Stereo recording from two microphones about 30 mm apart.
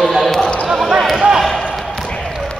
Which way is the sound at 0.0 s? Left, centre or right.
Centre.